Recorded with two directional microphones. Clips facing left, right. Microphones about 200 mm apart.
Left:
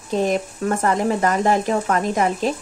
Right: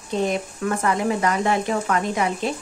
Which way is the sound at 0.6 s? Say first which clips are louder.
Left 1 dB; 40° left (ahead or behind).